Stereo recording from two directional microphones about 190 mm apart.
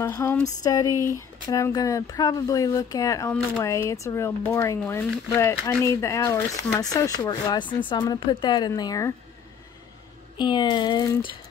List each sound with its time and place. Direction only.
0.0 s speech: 15° left (ahead or behind)
10.3 s speech: 25° left (ahead or behind)